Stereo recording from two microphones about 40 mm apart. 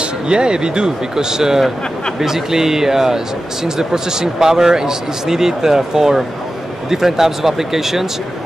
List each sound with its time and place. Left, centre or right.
0.3 s speech: right